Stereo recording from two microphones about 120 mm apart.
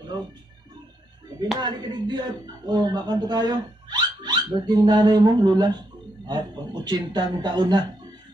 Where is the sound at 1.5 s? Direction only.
35° right (ahead or behind).